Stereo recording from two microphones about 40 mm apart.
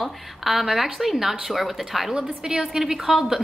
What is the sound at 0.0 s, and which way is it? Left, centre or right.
A woman's voice, centre.